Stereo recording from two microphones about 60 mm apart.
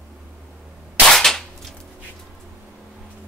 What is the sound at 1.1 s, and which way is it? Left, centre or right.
Cap gun, centre.